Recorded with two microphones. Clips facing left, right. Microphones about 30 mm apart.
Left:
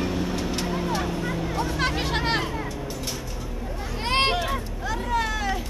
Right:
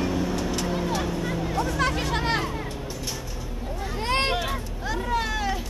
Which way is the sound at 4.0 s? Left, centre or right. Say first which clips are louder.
Left 2 dB; left.